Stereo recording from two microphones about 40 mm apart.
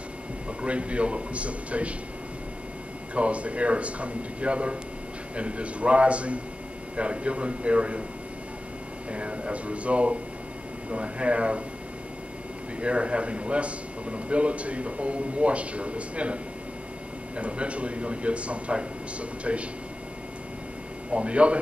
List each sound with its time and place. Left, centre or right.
0.5 s a man's voice: right
3.2 s a man's voice: right
9.1 s a man's voice: right
12.8 s a man's voice: right
17.4 s a man's voice: right
21.1 s a man's voice: right